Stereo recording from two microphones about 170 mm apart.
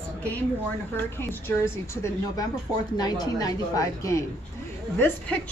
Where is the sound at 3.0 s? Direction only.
25° left (ahead or behind).